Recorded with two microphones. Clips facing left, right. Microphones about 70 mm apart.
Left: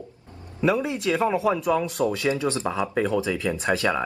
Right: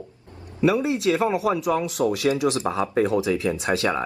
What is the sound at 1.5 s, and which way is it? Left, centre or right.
Speech, centre.